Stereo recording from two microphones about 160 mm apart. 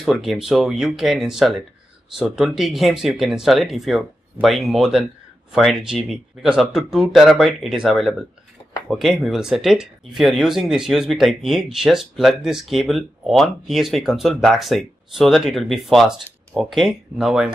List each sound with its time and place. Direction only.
0.0 s speech: centre (ahead or behind)